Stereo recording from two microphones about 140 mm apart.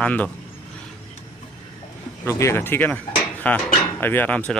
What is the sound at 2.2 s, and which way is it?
Speech, 20° left (ahead or behind).